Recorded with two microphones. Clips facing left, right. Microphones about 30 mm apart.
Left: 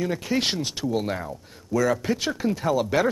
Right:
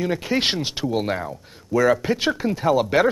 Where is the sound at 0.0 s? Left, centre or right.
Right.